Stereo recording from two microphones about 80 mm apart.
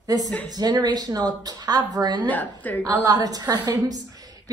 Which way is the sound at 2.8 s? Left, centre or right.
Right.